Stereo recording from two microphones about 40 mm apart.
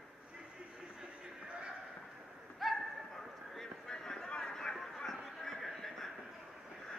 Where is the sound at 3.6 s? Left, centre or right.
Centre.